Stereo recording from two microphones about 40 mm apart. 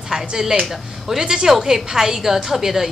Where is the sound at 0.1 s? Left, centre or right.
Centre.